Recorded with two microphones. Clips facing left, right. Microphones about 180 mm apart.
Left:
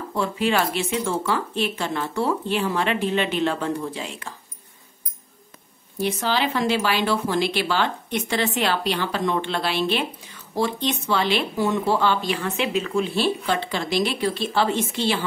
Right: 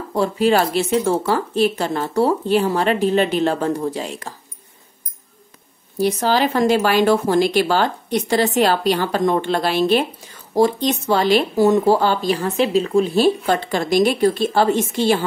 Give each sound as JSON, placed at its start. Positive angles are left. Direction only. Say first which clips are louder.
{"t": 0.1, "sound": "speech", "louder": "right 6 dB", "side_deg": -40}
{"t": 5.9, "sound": "speech", "louder": "right 6 dB", "side_deg": -40}